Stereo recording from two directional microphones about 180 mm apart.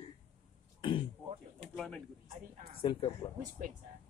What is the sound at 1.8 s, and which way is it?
Speech, 5° left (ahead or behind).